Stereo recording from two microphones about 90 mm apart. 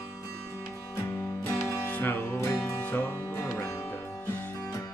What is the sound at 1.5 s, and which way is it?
Music, 30° left (ahead or behind).